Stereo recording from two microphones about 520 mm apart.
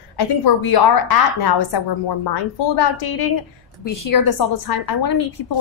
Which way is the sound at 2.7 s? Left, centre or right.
Left.